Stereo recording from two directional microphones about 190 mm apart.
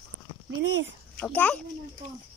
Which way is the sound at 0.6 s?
70° right (ahead or behind).